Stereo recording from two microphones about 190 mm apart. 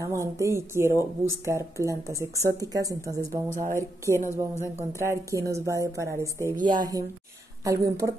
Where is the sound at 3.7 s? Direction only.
15° left (ahead or behind).